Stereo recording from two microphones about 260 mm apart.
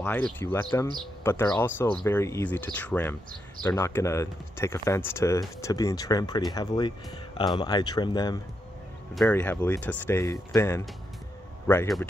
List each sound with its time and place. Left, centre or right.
0.0 s speech: centre
9.1 s speech: centre